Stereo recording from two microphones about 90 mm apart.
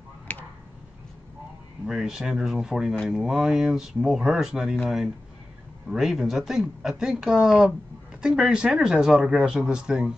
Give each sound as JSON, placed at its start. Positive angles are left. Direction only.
{"t": 1.9, "sound": "speech", "side_deg": -5}